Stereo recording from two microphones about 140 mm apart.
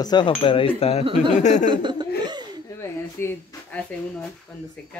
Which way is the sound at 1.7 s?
35° right (ahead or behind).